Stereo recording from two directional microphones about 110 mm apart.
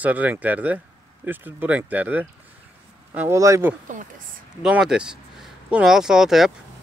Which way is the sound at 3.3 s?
25° right (ahead or behind).